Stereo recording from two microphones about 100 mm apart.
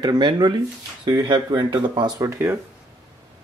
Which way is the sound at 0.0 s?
45° right (ahead or behind).